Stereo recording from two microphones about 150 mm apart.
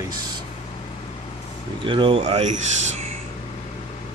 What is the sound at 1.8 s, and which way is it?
Speech, 35° right (ahead or behind).